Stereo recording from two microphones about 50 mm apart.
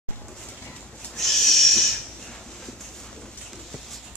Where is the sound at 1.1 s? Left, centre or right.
Centre.